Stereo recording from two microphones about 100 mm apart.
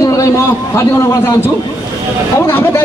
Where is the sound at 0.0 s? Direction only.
35° left (ahead or behind).